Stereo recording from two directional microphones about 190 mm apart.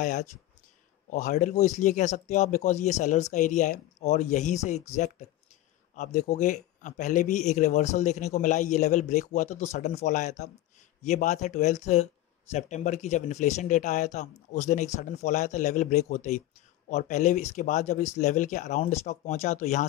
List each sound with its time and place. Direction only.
0.0 s speech: 40° left (ahead or behind)